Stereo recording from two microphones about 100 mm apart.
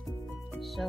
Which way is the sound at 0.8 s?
5° left (ahead or behind).